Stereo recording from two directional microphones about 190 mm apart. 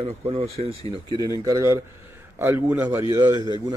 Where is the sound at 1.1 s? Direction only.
20° left (ahead or behind).